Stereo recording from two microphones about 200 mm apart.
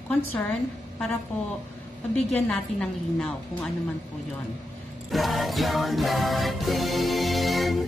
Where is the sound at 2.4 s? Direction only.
Centre (ahead or behind).